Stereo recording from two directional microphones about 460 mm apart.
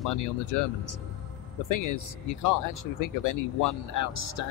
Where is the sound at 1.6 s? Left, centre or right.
Left.